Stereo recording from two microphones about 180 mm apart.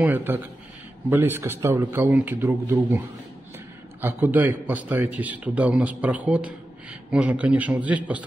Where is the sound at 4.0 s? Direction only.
10° right (ahead or behind).